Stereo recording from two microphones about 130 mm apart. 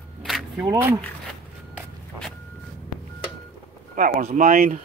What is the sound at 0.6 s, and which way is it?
Speech, 15° right (ahead or behind).